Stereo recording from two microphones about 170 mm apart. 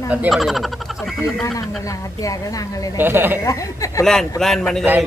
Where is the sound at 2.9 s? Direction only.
10° right (ahead or behind).